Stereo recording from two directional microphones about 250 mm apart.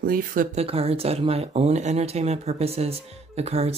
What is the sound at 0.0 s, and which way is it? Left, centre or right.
Speech, right.